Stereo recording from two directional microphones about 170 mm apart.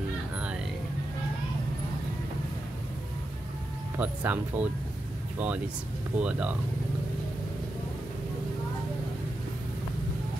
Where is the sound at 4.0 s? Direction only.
10° right (ahead or behind).